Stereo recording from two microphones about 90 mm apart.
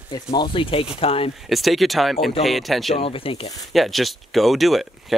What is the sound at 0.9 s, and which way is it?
Speech, 90° left.